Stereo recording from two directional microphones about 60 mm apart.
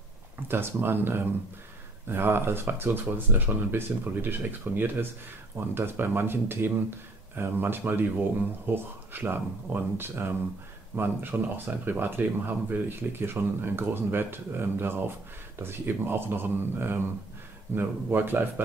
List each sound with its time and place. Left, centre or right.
0.5 s speech: right